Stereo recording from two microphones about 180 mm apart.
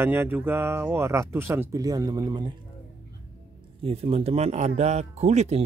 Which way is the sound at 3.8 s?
30° right (ahead or behind).